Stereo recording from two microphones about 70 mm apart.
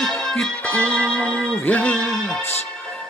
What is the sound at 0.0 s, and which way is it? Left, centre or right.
Music, centre.